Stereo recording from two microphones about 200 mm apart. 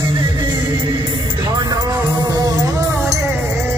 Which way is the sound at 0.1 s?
20° right (ahead or behind).